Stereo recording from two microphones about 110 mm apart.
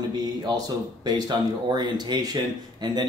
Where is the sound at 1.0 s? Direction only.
40° right (ahead or behind).